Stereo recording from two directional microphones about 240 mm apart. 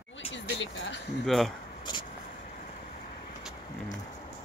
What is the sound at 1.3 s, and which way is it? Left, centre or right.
Speech, centre.